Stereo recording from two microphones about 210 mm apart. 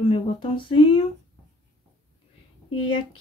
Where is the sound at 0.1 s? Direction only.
25° left (ahead or behind).